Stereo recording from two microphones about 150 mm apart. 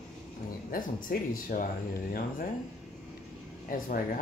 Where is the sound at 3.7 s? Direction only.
70° left (ahead or behind).